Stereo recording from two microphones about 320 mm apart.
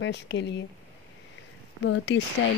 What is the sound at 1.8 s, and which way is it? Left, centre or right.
Speech, left.